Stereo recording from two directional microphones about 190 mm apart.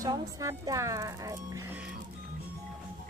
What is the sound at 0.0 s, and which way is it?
Speech, 15° right (ahead or behind).